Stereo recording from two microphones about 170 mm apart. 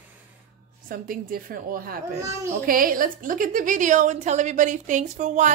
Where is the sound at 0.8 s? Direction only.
60° right (ahead or behind).